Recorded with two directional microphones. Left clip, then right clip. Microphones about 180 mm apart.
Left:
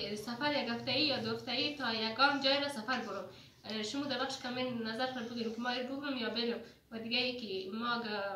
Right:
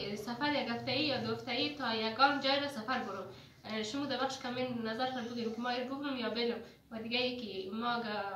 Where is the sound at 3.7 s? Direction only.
15° right (ahead or behind).